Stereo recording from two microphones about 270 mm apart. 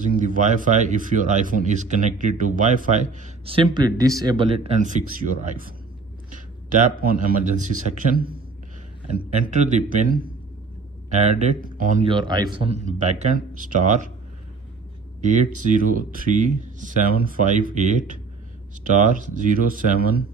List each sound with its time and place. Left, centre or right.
0.0 s a man's voice: right
15.3 s speech: right